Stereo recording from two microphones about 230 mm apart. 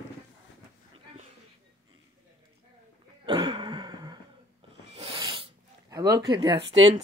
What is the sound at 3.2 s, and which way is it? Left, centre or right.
Throat clearing, centre.